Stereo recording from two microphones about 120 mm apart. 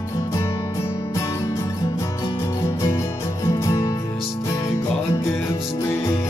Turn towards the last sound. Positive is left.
turn(degrees=20)  # may be behind; listen again after turning